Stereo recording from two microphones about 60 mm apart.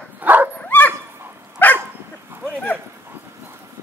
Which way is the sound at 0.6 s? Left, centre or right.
Left.